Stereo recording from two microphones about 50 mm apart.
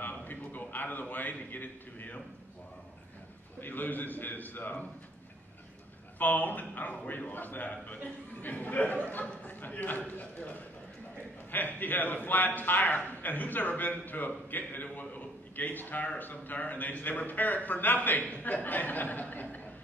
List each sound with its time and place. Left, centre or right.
0.0 s a sound: left
3.6 s a man's voice: left
6.1 s a man's voice: left